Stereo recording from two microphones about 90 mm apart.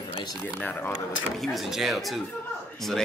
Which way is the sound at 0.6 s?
20° left (ahead or behind).